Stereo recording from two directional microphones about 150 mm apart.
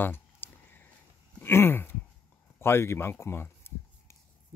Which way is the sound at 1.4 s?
15° left (ahead or behind).